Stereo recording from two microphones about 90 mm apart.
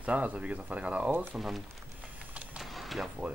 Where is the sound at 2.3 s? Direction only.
15° right (ahead or behind).